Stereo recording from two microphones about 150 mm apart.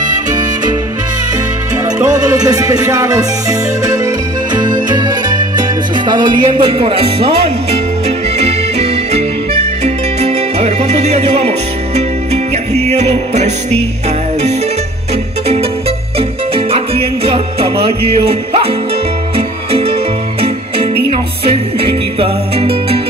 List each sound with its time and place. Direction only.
0.3 s music: 25° right (ahead or behind)
2.0 s music: 25° right (ahead or behind)
8.4 s music: 45° right (ahead or behind)
16.2 s music: 40° right (ahead or behind)